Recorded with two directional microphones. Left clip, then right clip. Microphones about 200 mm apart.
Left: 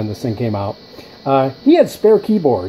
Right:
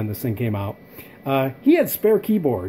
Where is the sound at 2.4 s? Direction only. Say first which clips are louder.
Left 7 dB; 15° right (ahead or behind).